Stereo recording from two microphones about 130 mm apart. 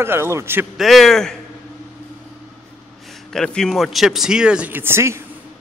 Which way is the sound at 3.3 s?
5° left (ahead or behind).